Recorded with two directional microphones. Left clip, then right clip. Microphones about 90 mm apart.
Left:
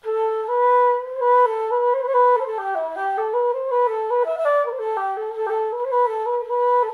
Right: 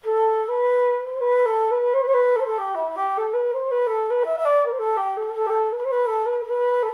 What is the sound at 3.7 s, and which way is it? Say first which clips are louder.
Flute: left 2 dB; 35° left (ahead or behind).